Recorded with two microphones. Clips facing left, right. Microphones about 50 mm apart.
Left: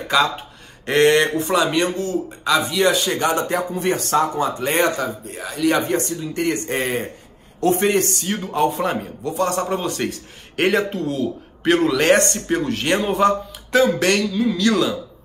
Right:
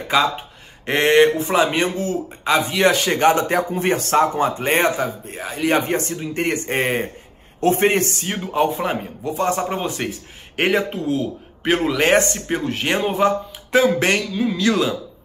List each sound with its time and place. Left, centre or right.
0.8 s speech: right
6.0 s speech: right
8.5 s a man's voice: centre